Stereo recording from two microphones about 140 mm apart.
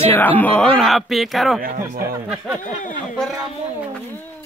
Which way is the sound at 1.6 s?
85° right.